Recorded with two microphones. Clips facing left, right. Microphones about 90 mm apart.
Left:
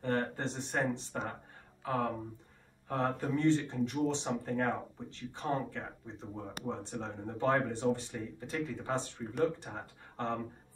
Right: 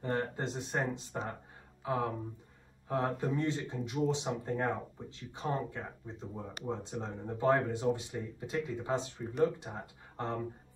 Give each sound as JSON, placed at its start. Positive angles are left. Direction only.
{"t": 0.0, "sound": "speech", "side_deg": -10}